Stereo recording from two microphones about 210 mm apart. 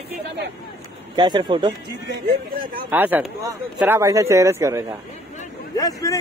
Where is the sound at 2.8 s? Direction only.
10° right (ahead or behind).